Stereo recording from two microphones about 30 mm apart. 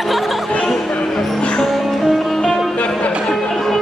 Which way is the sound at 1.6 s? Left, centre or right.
Centre.